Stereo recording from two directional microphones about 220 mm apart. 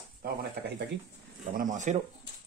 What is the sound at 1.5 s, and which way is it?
Speech, 35° right (ahead or behind).